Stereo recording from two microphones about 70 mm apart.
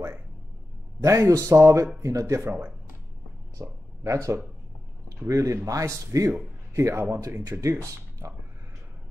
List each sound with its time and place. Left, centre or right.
1.0 s a man's voice: right
3.5 s a man's voice: right
7.7 s speech: right